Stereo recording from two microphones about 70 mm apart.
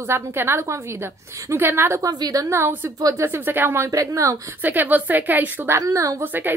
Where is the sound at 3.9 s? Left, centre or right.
Right.